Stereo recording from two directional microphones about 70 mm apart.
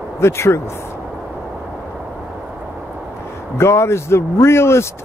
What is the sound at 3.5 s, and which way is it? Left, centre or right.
Speech, left.